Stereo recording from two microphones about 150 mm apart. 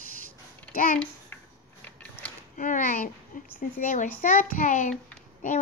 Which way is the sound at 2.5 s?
65° left (ahead or behind).